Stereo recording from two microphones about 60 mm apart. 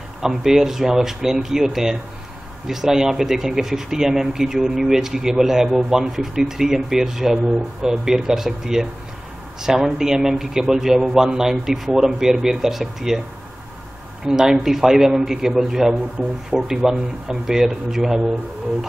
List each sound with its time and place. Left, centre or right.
0.2 s speech: centre
14.2 s speech: centre